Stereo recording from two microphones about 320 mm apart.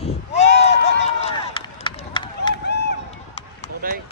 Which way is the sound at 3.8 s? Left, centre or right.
Right.